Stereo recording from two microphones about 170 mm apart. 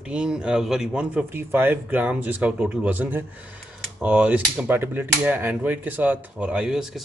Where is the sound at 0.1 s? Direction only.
5° right (ahead or behind).